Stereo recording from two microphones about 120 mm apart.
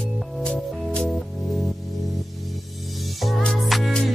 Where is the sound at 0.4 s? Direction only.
5° left (ahead or behind).